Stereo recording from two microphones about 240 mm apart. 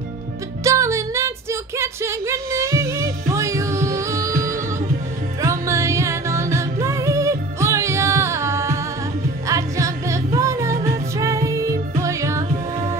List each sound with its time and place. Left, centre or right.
0.7 s music: centre
5.4 s music: centre